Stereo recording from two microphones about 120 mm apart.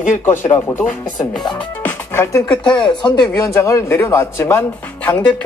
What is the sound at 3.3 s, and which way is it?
Speech, 25° left (ahead or behind).